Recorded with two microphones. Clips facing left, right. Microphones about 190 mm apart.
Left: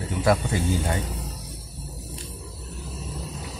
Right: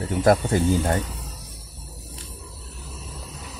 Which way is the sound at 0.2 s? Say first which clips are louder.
Right 4 dB; 45° right (ahead or behind).